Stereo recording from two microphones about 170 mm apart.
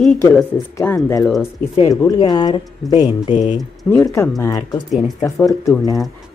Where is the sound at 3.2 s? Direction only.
45° left (ahead or behind).